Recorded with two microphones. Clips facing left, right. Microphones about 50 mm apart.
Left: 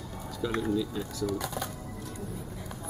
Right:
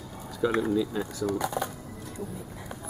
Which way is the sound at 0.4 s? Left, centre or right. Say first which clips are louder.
Right 4 dB; centre.